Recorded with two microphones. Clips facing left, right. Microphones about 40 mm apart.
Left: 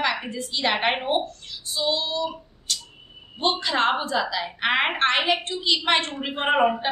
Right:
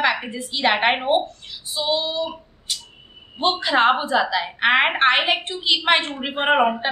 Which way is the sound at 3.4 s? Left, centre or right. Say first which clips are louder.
Right 5 dB; centre.